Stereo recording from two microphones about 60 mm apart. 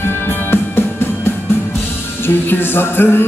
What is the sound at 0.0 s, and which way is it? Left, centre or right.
Music, left.